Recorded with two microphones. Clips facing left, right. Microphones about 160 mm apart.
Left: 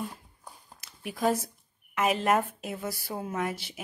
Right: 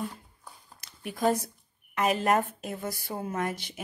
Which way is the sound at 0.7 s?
Centre (ahead or behind).